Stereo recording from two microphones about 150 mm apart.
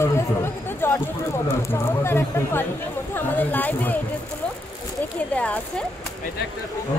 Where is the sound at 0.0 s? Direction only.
15° left (ahead or behind).